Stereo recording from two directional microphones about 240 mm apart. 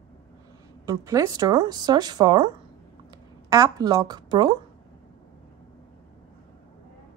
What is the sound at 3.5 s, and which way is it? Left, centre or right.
A woman's voice, centre.